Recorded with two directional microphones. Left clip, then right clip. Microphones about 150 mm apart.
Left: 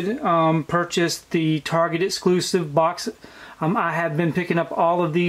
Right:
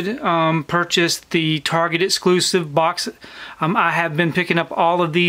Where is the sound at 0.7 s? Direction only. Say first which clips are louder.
Right 4 dB; 45° right (ahead or behind).